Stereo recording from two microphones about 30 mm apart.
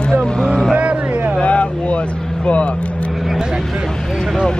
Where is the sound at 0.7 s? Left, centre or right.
Right.